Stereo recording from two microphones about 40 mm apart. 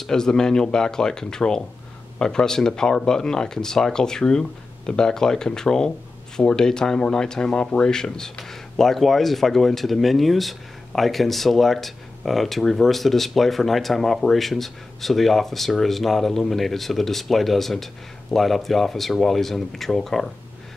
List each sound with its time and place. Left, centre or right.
0.0 s speech: centre